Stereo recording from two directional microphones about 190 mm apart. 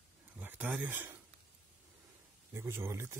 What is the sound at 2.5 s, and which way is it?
Speech, 15° right (ahead or behind).